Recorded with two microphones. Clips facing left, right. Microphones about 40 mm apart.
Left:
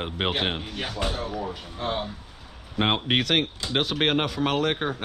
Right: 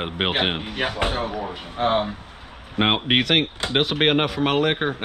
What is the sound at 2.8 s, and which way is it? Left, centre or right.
Speech, right.